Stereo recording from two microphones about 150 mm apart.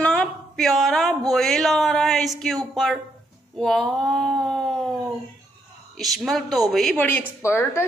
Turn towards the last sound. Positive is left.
turn(degrees=15)  # may be behind; listen again after turning